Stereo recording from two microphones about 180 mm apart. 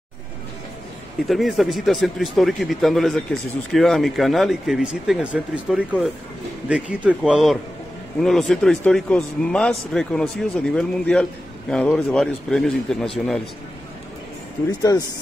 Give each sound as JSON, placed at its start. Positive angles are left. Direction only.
{"t": 1.2, "sound": "a man's voice", "side_deg": 0}
{"t": 14.8, "sound": "speech", "side_deg": 20}